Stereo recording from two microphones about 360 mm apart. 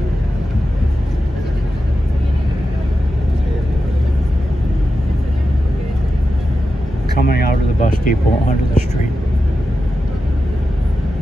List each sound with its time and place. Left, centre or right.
7.2 s vehicle: left
8.0 s speech: left